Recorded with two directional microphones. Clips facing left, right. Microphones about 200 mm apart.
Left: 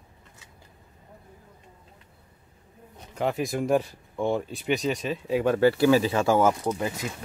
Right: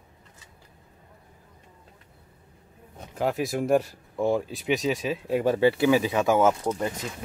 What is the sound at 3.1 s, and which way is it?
Speech, centre (ahead or behind).